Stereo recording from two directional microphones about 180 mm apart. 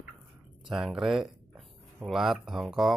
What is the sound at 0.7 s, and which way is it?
Speech, centre (ahead or behind).